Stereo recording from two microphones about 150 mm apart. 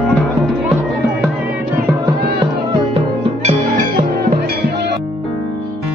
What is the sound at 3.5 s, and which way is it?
Music, 60° right (ahead or behind).